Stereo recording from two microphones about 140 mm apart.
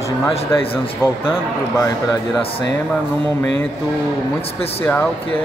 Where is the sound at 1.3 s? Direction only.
20° left (ahead or behind).